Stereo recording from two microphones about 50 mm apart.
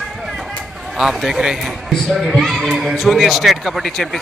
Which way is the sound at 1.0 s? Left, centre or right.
Centre.